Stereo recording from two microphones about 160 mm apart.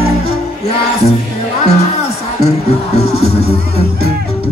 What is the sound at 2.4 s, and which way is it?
Music, 40° left (ahead or behind).